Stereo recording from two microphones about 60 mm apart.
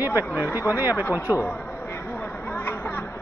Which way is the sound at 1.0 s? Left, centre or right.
Left.